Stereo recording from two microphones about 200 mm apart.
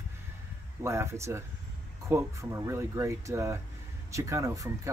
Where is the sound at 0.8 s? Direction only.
15° right (ahead or behind).